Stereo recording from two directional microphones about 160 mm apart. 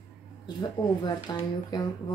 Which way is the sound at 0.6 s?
25° left (ahead or behind).